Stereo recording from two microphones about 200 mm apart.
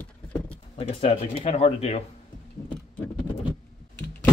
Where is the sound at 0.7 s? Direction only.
30° left (ahead or behind).